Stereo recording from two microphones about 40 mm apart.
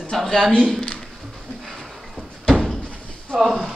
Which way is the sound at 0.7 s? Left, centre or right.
Centre.